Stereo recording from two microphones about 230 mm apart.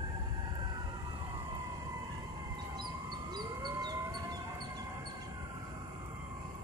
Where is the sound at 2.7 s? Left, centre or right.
Centre.